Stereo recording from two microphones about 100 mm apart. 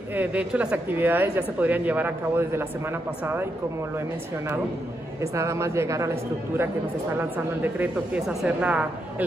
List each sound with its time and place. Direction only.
0.1 s speech: 15° right (ahead or behind)
5.2 s speech: 30° right (ahead or behind)
7.2 s a woman's voice: 15° right (ahead or behind)
8.3 s a woman's voice: 5° right (ahead or behind)